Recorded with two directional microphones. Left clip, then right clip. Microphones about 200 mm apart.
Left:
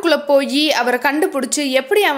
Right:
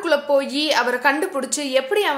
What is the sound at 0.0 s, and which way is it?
A woman's voice, 35° left (ahead or behind).